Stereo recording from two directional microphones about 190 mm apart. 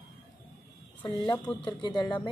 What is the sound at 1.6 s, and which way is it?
Speech, 25° left (ahead or behind).